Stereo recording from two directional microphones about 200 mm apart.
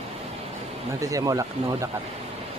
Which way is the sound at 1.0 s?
15° right (ahead or behind).